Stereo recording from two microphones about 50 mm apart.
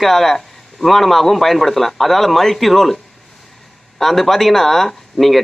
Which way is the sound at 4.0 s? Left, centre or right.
Centre.